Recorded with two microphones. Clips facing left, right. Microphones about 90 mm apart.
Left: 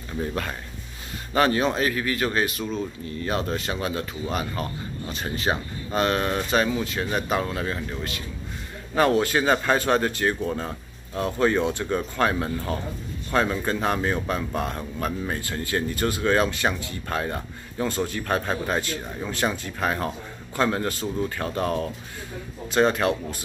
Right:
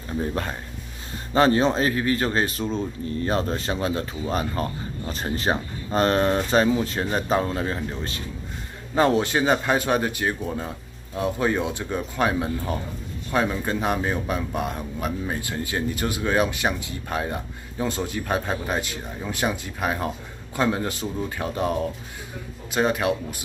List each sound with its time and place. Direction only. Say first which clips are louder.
1.3 s speech: right 3 dB; 30° right (ahead or behind); by 23.1 s 10° right (ahead or behind)